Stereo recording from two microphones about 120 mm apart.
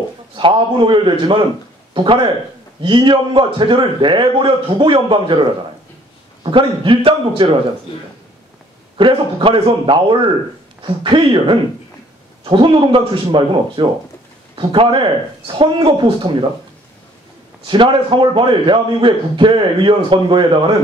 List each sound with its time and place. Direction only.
0.4 s a man's voice: 40° right (ahead or behind)
8.9 s a man's voice: 45° right (ahead or behind)
17.6 s a man's voice: 45° right (ahead or behind)